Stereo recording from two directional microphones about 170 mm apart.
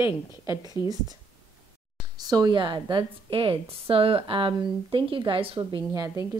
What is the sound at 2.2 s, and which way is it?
A woman's voice, 25° right (ahead or behind).